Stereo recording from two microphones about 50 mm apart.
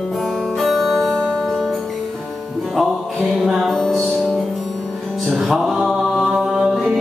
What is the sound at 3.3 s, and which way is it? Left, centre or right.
Music, centre.